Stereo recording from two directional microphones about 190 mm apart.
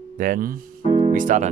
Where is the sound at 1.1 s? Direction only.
40° right (ahead or behind).